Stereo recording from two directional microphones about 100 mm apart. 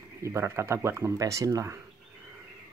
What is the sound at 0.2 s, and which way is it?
Speech, 30° right (ahead or behind).